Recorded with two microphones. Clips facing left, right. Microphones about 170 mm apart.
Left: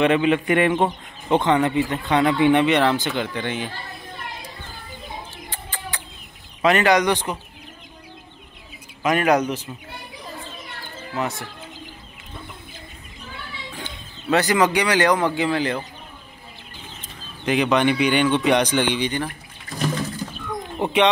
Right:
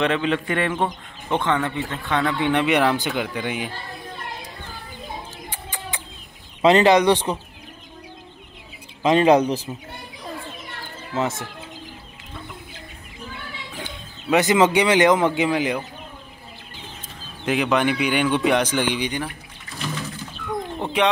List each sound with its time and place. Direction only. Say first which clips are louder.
0.0 s speech: left 4 dB; 10° left (ahead or behind)
2.3 s speech: left 6 dB; 5° left (ahead or behind)
2.6 s speech: left 1 dB; 5° right (ahead or behind)
5.7 s a sound: even; 15° right (ahead or behind)
6.6 s speech: right 3 dB; 25° right (ahead or behind)
9.0 s speech: right 3 dB; 25° right (ahead or behind)
11.1 s speech: right 2 dB; 25° right (ahead or behind)
13.7 s speech: right 1 dB; 15° right (ahead or behind)
17.5 s speech: left 2 dB; 5° right (ahead or behind)
20.8 s speech: left 3 dB; centre (ahead or behind)